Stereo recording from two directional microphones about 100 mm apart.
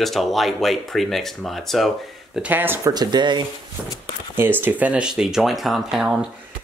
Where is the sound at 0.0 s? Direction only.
Centre (ahead or behind).